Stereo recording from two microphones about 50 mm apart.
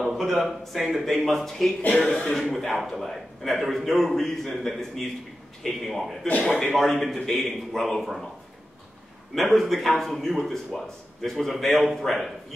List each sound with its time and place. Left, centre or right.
0.0 s a sound: centre
0.4 s a man's voice: centre
1.9 s speech: left
2.3 s a man's voice: centre
9.3 s a man's voice: centre